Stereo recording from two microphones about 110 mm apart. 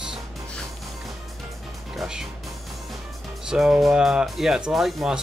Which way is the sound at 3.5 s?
5° right (ahead or behind).